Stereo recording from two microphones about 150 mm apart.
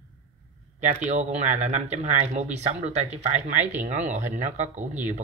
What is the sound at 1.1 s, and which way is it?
Speech, 50° right (ahead or behind).